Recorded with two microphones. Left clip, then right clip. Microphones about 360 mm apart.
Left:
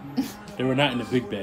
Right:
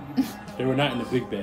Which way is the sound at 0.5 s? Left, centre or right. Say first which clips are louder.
Left 1 dB; left.